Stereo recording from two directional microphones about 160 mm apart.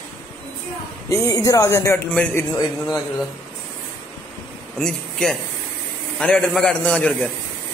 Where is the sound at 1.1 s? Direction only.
20° left (ahead or behind).